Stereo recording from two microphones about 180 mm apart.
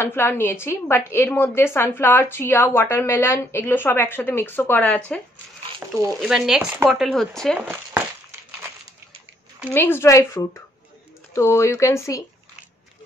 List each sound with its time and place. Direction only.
0.0 s a woman's voice: 10° left (ahead or behind)
5.8 s speech: 10° right (ahead or behind)
9.7 s a woman's voice: 10° left (ahead or behind)